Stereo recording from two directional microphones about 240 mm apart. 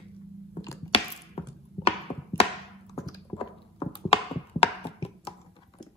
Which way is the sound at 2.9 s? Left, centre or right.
Centre.